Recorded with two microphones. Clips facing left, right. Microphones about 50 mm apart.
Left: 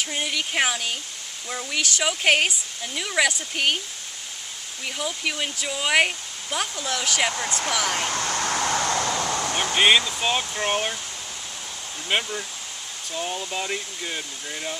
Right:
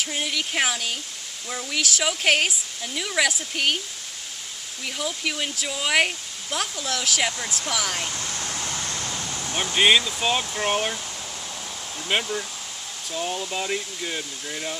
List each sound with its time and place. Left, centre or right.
0.0 s a sound: centre
0.3 s speech: centre
4.8 s speech: centre
8.0 s a sound: left
9.8 s speech: centre
12.1 s speech: centre